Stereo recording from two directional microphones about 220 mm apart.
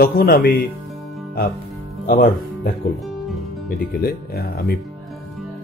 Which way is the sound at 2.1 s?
40° left (ahead or behind).